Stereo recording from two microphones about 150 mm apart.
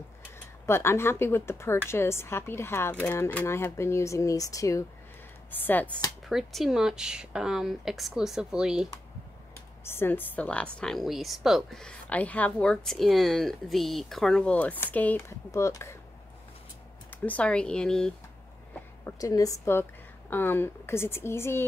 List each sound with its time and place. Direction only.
0.7 s speech: 15° left (ahead or behind)
6.2 s speech: centre (ahead or behind)
9.8 s speech: 15° left (ahead or behind)
17.1 s speech: 10° left (ahead or behind)
19.0 s speech: 20° left (ahead or behind)